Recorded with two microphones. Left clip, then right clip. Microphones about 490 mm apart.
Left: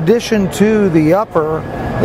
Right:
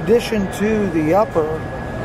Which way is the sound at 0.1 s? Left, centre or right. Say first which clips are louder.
Left 3 dB; left.